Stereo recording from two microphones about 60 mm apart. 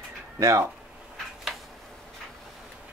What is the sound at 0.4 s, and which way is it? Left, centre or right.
Speech, right.